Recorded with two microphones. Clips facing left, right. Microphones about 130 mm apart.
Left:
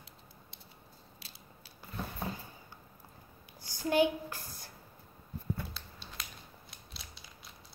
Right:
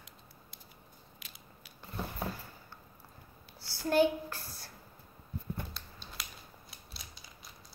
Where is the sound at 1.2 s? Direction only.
35° left (ahead or behind).